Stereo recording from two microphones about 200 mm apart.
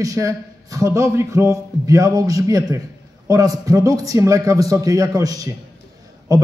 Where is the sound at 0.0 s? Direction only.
15° right (ahead or behind).